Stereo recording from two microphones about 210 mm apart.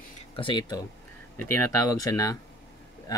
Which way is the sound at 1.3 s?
10° left (ahead or behind).